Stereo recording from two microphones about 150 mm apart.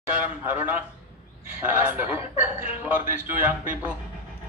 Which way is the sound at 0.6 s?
10° right (ahead or behind).